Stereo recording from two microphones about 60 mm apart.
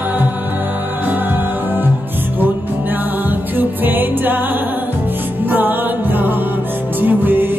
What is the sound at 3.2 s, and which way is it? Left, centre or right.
Music, right.